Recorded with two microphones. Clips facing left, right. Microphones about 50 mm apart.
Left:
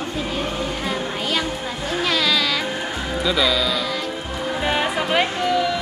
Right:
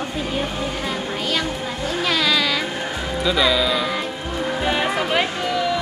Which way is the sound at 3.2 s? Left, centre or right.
Centre.